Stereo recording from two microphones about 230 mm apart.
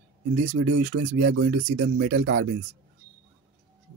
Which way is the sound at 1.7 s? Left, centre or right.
Right.